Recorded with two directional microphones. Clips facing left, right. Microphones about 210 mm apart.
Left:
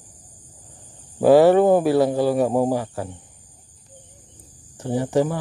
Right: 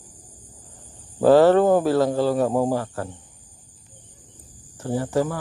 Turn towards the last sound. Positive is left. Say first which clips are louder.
# left 2 dB
turn(degrees=20)  # may be behind; listen again after turning